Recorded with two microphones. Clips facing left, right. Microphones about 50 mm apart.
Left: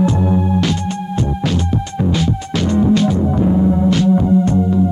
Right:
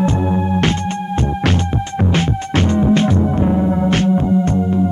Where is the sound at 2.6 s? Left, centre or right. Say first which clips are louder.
Left 2 dB; right.